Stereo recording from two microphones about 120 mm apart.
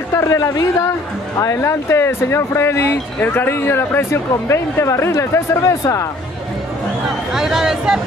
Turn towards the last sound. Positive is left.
turn(degrees=-5)  # may be behind; listen again after turning